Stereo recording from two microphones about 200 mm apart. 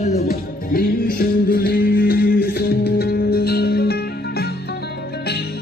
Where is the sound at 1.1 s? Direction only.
50° left (ahead or behind).